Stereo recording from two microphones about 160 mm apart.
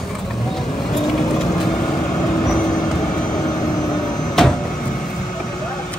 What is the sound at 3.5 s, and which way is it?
Vehicle, 25° left (ahead or behind).